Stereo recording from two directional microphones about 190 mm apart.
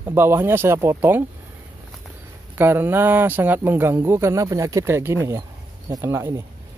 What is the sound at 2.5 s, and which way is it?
A man's voice, 10° right (ahead or behind).